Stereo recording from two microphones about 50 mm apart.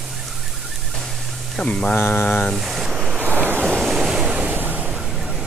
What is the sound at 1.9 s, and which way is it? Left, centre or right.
Mantra, left.